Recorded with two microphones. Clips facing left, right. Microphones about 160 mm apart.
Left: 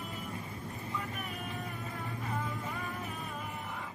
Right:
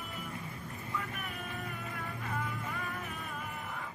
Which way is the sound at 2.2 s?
25° left (ahead or behind).